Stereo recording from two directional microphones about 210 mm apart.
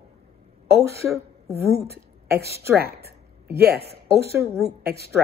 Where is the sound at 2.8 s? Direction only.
50° right (ahead or behind).